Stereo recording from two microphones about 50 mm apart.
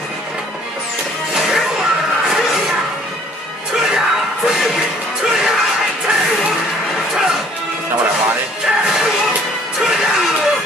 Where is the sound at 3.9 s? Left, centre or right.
Centre.